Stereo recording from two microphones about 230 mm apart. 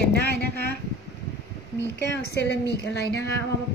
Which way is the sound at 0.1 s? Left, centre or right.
Left.